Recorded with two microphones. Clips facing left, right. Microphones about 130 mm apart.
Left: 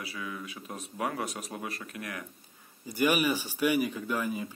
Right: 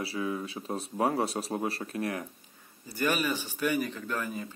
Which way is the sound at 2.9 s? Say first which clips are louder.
Left 3 dB; 10° left (ahead or behind).